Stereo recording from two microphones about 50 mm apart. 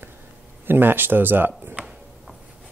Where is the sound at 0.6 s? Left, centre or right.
Right.